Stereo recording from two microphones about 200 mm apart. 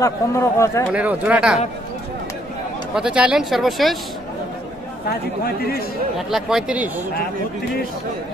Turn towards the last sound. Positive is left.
turn(degrees=-5)  # may be behind; listen again after turning